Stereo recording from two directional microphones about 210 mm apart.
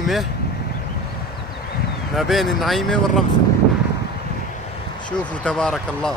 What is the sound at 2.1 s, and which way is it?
Speech, centre (ahead or behind).